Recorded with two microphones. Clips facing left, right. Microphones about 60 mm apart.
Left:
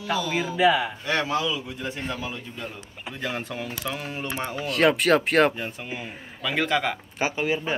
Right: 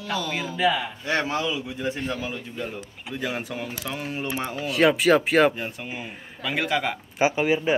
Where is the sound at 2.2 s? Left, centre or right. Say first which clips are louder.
Right 2 dB; centre.